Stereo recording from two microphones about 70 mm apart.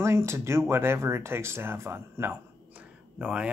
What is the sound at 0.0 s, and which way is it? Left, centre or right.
Speech, right.